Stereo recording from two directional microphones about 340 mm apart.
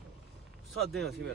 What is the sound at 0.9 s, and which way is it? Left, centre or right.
Speech, right.